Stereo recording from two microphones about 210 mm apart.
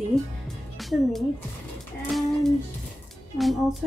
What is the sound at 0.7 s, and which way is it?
Music, centre (ahead or behind).